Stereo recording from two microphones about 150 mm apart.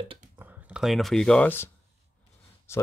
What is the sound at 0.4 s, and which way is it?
Speech, 10° right (ahead or behind).